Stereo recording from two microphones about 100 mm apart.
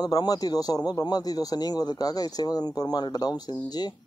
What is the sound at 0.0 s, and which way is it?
Speech, 40° left (ahead or behind).